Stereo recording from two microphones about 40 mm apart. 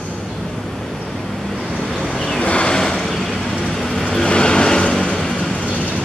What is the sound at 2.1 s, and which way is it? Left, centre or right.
Vehicle, centre.